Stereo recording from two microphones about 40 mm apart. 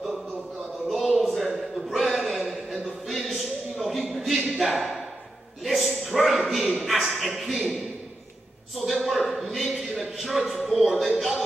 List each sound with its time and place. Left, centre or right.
0.8 s a sound: centre
5.6 s a man's voice: centre
8.8 s a man's voice: centre